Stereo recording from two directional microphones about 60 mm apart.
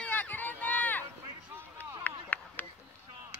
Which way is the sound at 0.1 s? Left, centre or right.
Left.